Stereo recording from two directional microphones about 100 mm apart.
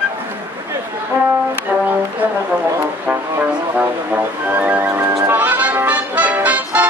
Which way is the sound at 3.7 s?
15° right (ahead or behind).